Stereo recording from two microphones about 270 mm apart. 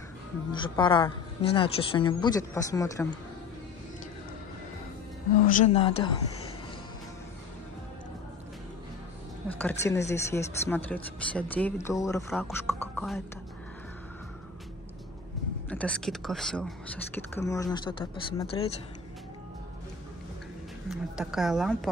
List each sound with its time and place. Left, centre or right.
0.5 s a woman's voice: centre
5.6 s speech: left
9.5 s a woman's voice: centre
15.7 s speech: centre
20.9 s speech: centre